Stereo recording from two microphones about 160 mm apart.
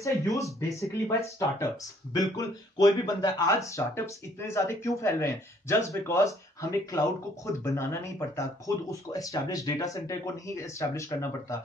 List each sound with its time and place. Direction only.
0.0 s speech: 20° left (ahead or behind)
7.6 s speech: 15° left (ahead or behind)